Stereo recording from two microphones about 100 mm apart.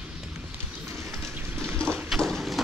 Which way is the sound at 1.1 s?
25° right (ahead or behind).